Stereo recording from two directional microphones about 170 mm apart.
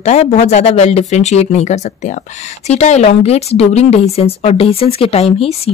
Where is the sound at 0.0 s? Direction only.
40° left (ahead or behind).